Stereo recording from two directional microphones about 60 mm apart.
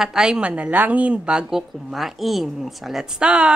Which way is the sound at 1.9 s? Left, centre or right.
Centre.